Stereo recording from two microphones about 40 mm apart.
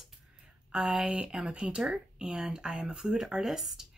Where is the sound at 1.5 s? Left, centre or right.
Right.